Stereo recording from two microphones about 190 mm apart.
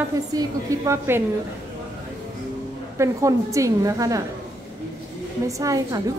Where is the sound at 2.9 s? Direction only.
15° right (ahead or behind).